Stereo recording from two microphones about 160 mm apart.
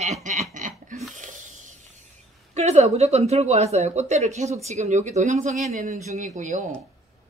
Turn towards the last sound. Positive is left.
turn(degrees=-50)  # may be behind; listen again after turning